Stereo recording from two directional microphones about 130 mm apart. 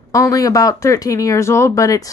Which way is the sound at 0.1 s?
25° left (ahead or behind).